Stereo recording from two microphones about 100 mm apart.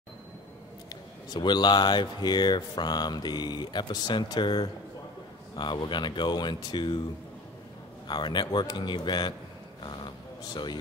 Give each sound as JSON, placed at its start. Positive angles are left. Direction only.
{"t": 0.8, "sound": "speech", "side_deg": 45}
{"t": 8.1, "sound": "speech", "side_deg": 50}
{"t": 9.8, "sound": "a sound", "side_deg": 50}